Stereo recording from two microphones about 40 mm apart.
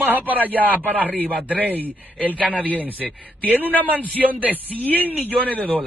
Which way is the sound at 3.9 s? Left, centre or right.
Right.